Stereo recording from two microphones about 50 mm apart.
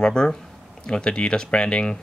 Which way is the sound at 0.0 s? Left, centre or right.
Centre.